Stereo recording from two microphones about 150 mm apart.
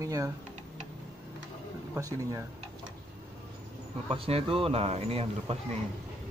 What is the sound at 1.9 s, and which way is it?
Speech, 20° right (ahead or behind).